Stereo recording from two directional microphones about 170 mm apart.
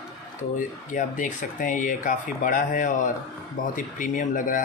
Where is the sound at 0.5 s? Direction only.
50° left (ahead or behind).